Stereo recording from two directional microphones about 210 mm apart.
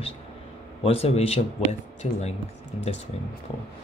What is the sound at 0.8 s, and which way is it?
Speech, 30° left (ahead or behind).